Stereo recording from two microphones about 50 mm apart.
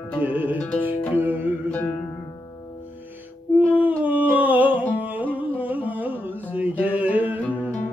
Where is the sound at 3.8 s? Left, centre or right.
Right.